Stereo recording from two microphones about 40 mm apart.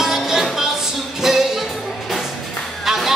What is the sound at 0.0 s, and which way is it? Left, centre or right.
Music, centre.